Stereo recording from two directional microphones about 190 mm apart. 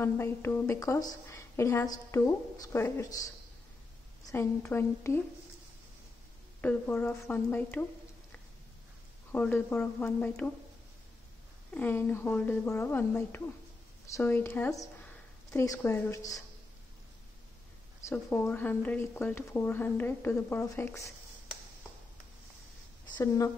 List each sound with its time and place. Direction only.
0.0 s speech: 10° left (ahead or behind)
4.3 s speech: 15° left (ahead or behind)
6.6 s speech: 10° left (ahead or behind)
9.3 s speech: 10° left (ahead or behind)
11.7 s speech: 10° left (ahead or behind)
18.0 s speech: 10° left (ahead or behind)
23.1 s speech: 15° left (ahead or behind)